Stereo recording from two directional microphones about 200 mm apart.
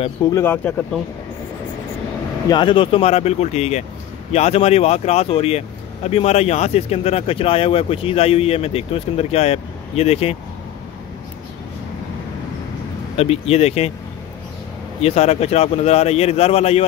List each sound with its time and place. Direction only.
0.3 s speech: 10° left (ahead or behind)
2.4 s speech: 20° left (ahead or behind)
13.1 s speech: 30° left (ahead or behind)
15.0 s speech: 30° left (ahead or behind)